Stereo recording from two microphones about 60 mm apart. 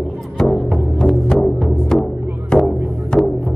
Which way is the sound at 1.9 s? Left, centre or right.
Centre.